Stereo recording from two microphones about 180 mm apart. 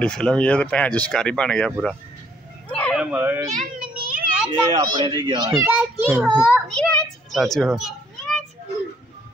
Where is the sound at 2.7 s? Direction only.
5° left (ahead or behind).